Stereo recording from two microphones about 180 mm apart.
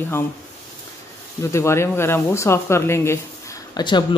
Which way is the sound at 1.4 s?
15° left (ahead or behind).